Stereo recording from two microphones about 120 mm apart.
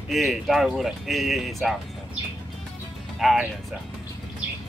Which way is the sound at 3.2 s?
Centre (ahead or behind).